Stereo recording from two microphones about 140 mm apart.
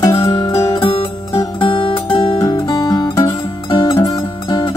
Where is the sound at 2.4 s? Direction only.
25° left (ahead or behind).